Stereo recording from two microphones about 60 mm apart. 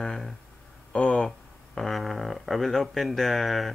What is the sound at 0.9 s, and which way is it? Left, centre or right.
Speech, left.